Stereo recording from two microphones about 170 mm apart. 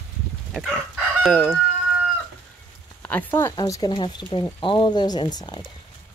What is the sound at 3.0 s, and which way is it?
Speech, 10° left (ahead or behind).